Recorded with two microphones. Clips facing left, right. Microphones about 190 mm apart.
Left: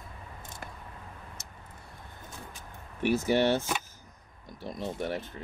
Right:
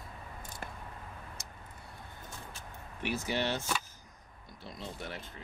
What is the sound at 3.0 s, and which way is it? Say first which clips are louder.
Speech: left 9 dB; 50° left (ahead or behind).